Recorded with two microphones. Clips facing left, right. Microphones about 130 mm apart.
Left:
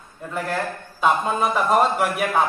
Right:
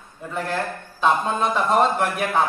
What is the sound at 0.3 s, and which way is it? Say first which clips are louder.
A man's voice: even; centre (ahead or behind).